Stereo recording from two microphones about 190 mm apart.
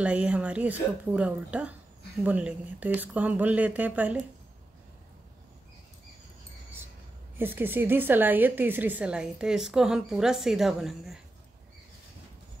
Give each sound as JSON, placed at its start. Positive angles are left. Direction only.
{"t": 0.0, "sound": "a woman's voice", "side_deg": -5}
{"t": 7.3, "sound": "a woman's voice", "side_deg": -10}